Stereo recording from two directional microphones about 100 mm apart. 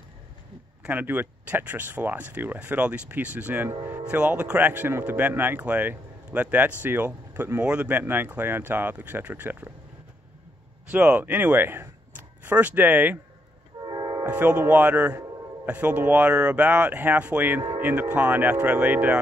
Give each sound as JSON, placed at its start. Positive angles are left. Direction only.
{"t": 0.8, "sound": "speech", "side_deg": -20}
{"t": 10.9, "sound": "speech", "side_deg": -15}
{"t": 13.8, "sound": "train horn", "side_deg": -45}
{"t": 14.2, "sound": "speech", "side_deg": -15}